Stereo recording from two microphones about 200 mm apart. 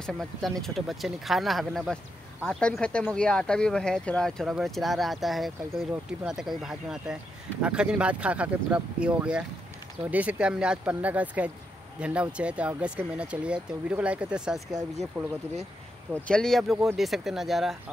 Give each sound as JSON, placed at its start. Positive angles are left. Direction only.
{"t": 0.0, "sound": "speech", "side_deg": 0}
{"t": 15.2, "sound": "speech", "side_deg": -15}
{"t": 16.3, "sound": "speech", "side_deg": 5}